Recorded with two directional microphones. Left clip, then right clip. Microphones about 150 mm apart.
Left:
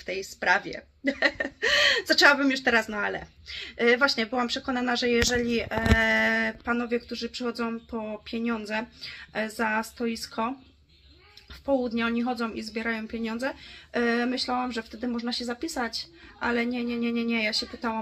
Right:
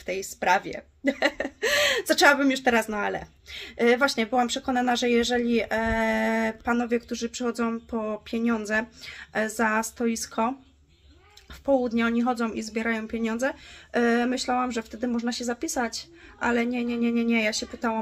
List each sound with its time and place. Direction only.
0.0 s speech: 25° right (ahead or behind)
11.6 s speech: 20° right (ahead or behind)